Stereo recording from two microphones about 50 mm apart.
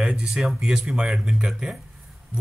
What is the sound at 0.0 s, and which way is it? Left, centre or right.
Speech, centre.